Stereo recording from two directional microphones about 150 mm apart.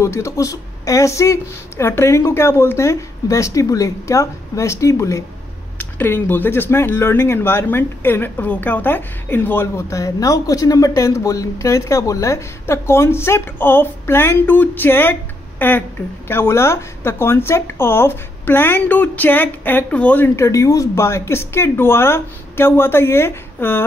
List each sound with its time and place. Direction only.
0.0 s speech: 20° left (ahead or behind)